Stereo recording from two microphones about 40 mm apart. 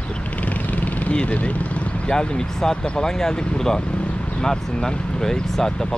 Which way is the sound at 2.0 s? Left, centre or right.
Left.